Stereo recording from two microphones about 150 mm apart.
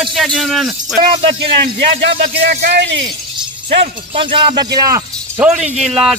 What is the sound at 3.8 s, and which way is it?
Speech, 40° right (ahead or behind).